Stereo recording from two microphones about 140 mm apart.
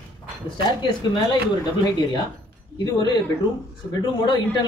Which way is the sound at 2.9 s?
30° left (ahead or behind).